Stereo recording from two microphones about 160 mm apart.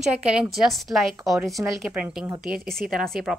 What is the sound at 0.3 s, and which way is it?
A woman's voice, centre (ahead or behind).